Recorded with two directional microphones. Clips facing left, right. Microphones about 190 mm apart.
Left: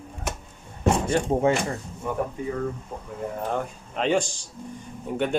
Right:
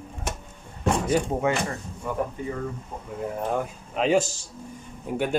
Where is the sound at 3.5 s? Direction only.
5° right (ahead or behind).